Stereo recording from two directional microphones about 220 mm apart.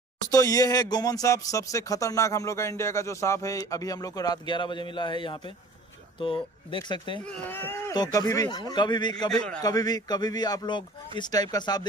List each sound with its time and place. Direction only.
0.3 s speech: 15° left (ahead or behind)
7.2 s speech: 10° left (ahead or behind)